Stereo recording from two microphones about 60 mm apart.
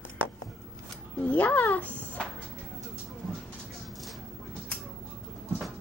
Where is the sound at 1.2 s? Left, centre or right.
Left.